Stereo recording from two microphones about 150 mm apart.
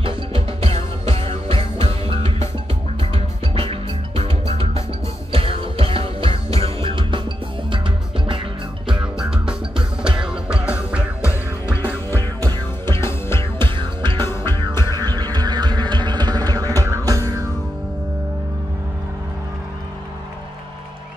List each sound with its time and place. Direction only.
0.0 s music: 35° right (ahead or behind)
3.5 s music: 40° right (ahead or behind)
9.0 s music: 5° right (ahead or behind)
11.2 s music: 15° left (ahead or behind)
13.6 s music: 30° right (ahead or behind)
14.1 s music: 15° left (ahead or behind)
14.9 s music: 25° right (ahead or behind)